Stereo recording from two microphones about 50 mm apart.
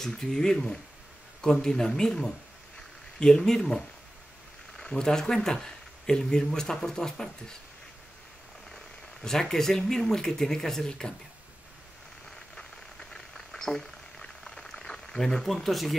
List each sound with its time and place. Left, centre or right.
0.0 s speech: centre
8.7 s speech: centre
13.1 s boiling: centre